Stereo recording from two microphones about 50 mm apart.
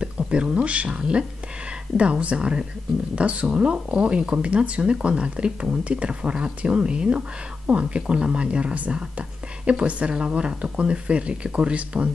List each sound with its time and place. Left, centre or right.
0.0 s speech: centre